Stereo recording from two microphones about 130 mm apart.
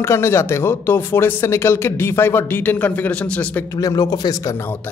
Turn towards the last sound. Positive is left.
turn(degrees=30)  # may be behind; listen again after turning